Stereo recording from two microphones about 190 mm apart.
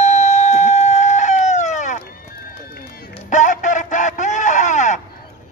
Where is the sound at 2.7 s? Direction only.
45° left (ahead or behind).